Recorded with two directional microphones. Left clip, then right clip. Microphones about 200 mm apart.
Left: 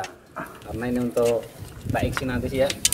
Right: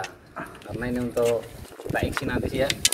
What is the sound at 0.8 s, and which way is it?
Speech, 35° left (ahead or behind).